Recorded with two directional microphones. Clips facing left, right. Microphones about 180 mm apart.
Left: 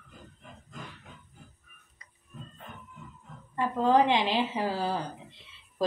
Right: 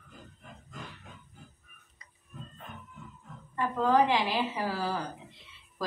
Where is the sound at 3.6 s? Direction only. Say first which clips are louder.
Left 2 dB; 20° left (ahead or behind).